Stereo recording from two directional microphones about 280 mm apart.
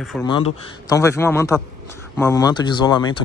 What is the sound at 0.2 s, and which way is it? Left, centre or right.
Speech, centre.